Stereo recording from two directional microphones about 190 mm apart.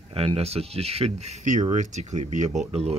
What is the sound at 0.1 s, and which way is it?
Speech, 30° right (ahead or behind).